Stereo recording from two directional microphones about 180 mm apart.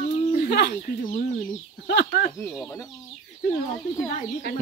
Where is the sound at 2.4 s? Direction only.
Centre (ahead or behind).